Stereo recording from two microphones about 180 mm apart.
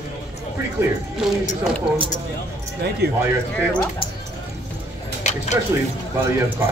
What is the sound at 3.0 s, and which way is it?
Speech, 60° right (ahead or behind).